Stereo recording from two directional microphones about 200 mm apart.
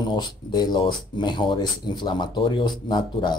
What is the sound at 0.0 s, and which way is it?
Speech, 20° left (ahead or behind).